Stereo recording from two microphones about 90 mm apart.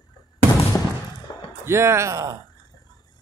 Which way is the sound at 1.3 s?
60° left (ahead or behind).